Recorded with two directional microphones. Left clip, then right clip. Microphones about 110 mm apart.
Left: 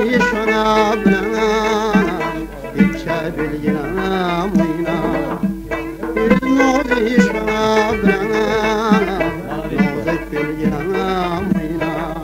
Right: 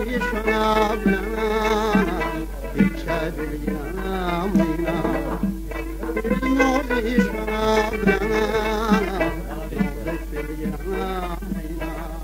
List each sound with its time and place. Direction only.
0.0 s music: 35° left (ahead or behind)
4.1 s music: 30° left (ahead or behind)
6.2 s music: 40° left (ahead or behind)
10.6 s music: 30° left (ahead or behind)